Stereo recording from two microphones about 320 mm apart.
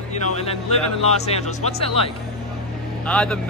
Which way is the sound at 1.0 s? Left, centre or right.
Centre.